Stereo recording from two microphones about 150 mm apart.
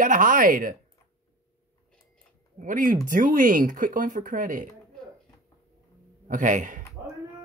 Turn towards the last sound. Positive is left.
turn(degrees=-60)  # may be behind; listen again after turning